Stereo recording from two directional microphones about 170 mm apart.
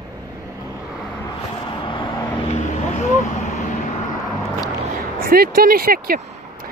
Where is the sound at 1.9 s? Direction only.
30° left (ahead or behind).